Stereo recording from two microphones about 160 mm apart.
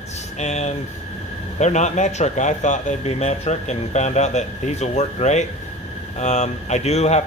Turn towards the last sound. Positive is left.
turn(degrees=45)  # may be behind; listen again after turning